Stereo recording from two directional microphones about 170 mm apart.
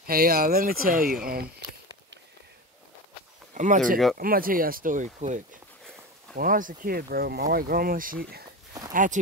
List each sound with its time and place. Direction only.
0.0 s speech: 60° right (ahead or behind)
3.5 s speech: 45° right (ahead or behind)
6.3 s speech: 55° right (ahead or behind)
8.9 s speech: 50° right (ahead or behind)